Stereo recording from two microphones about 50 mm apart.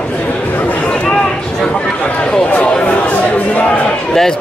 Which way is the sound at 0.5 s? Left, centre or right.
Left.